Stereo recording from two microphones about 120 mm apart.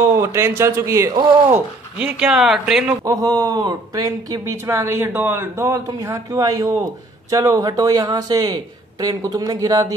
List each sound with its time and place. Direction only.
0.1 s speech: 20° right (ahead or behind)
2.0 s speech: 10° right (ahead or behind)
3.1 s speech: 30° right (ahead or behind)